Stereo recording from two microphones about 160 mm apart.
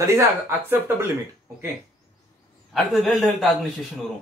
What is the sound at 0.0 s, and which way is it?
Speech, 15° right (ahead or behind).